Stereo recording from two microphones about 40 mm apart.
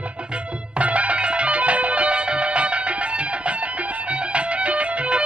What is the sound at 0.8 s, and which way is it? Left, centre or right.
Music, right.